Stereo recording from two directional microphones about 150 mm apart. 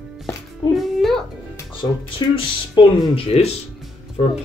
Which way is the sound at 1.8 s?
25° left (ahead or behind).